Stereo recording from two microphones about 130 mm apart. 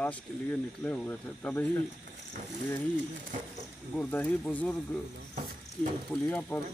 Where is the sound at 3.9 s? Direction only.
10° left (ahead or behind).